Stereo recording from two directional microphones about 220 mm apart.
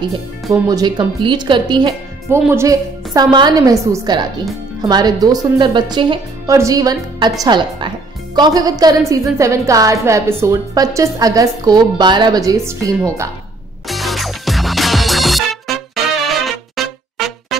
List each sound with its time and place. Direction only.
0.5 s a woman's voice: 15° right (ahead or behind)
13.8 s music: centre (ahead or behind)